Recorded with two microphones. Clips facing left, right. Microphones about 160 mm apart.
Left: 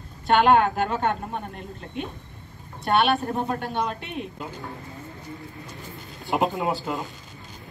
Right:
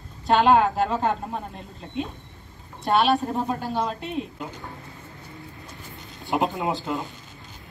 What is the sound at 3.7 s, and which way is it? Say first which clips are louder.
Speech: right 1 dB; 35° right (ahead or behind).